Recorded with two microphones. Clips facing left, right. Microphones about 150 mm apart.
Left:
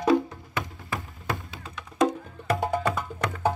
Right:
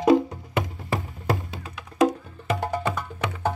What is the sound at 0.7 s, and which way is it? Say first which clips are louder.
Music: right 5 dB; 35° right (ahead or behind).